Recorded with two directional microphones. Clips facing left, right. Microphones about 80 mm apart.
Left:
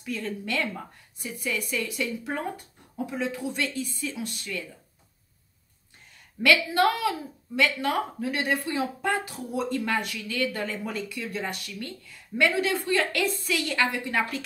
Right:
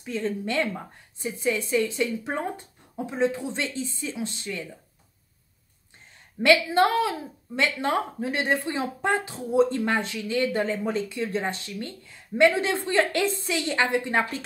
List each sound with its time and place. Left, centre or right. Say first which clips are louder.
0.0 s a woman's voice: right 4 dB; right
6.4 s a woman's voice: right 2 dB; right